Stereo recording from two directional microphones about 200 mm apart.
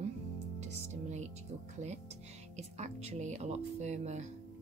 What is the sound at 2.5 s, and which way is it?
Speech, 35° right (ahead or behind).